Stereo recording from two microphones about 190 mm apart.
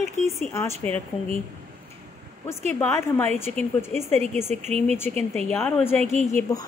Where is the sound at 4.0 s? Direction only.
35° right (ahead or behind).